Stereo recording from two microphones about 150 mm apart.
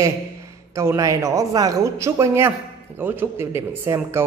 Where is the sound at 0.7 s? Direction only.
20° right (ahead or behind).